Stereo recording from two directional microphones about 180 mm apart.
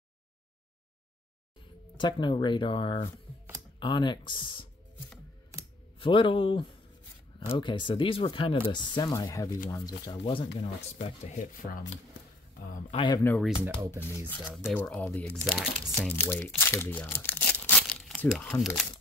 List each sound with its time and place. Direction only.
2.0 s speech: 25° left (ahead or behind)
5.5 s computer keyboard: 15° right (ahead or behind)
5.9 s speech: 30° left (ahead or behind)
11.3 s speech: 50° left (ahead or behind)
12.9 s speech: 25° left (ahead or behind)
13.9 s speech: 10° left (ahead or behind)
14.4 s speech: 5° right (ahead or behind)
14.7 s speech: 10° left (ahead or behind)